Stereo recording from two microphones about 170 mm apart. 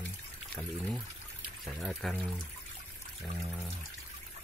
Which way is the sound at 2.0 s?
Centre (ahead or behind).